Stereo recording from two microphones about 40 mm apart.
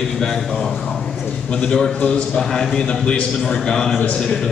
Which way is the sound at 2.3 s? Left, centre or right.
Centre.